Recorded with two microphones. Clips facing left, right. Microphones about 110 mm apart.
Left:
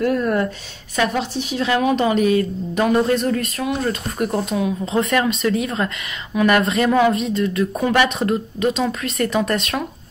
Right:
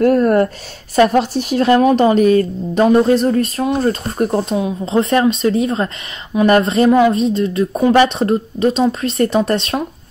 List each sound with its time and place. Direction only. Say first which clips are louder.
0.0 s a woman's voice: right 7 dB; 45° right (ahead or behind); by 9.8 s 30° right (ahead or behind)